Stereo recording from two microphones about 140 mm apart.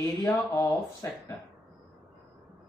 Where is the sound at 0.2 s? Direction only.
15° left (ahead or behind).